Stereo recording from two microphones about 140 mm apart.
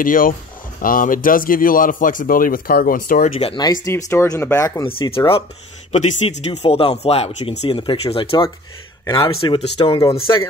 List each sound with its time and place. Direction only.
0.0 s speech: 75° left (ahead or behind)
3.8 s speech: 20° left (ahead or behind)
4.8 s speech: 40° left (ahead or behind)
5.9 s speech: 50° left (ahead or behind)
10.3 s speech: 30° left (ahead or behind)